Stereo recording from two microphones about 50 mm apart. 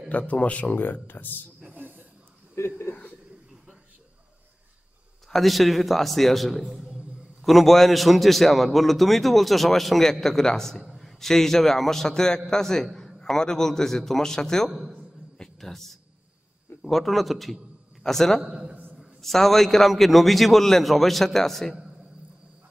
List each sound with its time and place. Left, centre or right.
0.3 s speech: left
0.7 s speech: left
1.7 s snake: right
2.5 s a sound: left
5.3 s a man's voice: centre
10.8 s a man's voice: centre
15.3 s a sound: centre
16.8 s a man's voice: centre
18.5 s a man's voice: right
18.9 s a man's voice: centre